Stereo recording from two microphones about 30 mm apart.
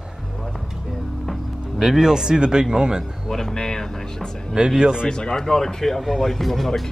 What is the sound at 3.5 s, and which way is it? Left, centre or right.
Vehicle, left.